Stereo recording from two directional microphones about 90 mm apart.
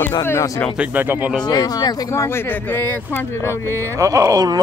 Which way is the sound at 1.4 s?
50° left (ahead or behind).